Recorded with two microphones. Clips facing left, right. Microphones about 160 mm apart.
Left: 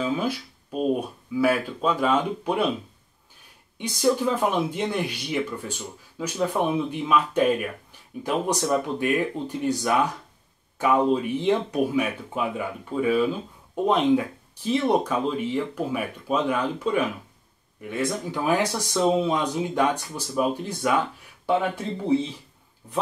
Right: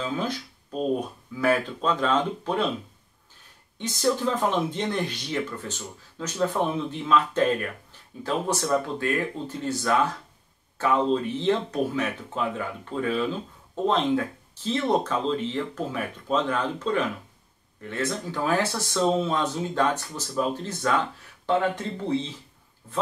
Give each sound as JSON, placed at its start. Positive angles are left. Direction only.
{"t": 0.0, "sound": "speech", "side_deg": 10}
{"t": 3.7, "sound": "speech", "side_deg": 10}